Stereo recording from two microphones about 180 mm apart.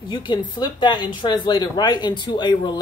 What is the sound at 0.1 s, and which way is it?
Speech, 25° left (ahead or behind).